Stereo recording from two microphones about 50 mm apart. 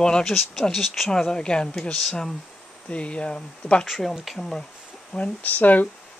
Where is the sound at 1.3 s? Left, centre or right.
Centre.